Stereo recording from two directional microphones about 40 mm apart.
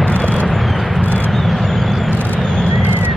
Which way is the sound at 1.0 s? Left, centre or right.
Left.